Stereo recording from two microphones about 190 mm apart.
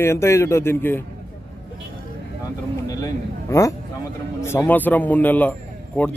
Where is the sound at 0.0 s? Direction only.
15° left (ahead or behind).